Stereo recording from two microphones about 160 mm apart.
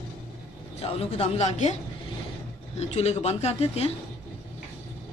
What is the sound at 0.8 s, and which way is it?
Speech, 40° left (ahead or behind).